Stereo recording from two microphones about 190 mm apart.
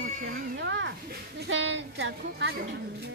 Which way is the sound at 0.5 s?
70° right (ahead or behind).